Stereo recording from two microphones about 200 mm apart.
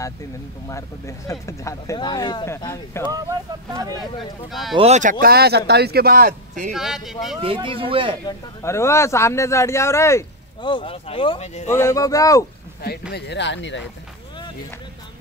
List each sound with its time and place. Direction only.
0.7 s speech: 15° left (ahead or behind)
3.1 s speech: 15° right (ahead or behind)
4.5 s speech: centre (ahead or behind)
4.7 s speech: 35° right (ahead or behind)
5.2 s a man's voice: 50° right (ahead or behind)
6.7 s speech: centre (ahead or behind)
7.4 s speech: 25° right (ahead or behind)
8.3 s speech: 15° left (ahead or behind); by 11.7 s 35° left (ahead or behind)
11.7 s speech: 15° left (ahead or behind)
13.1 s speech: 60° left (ahead or behind)